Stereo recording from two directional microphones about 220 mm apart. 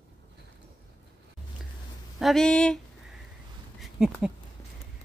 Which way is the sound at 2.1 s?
Centre (ahead or behind).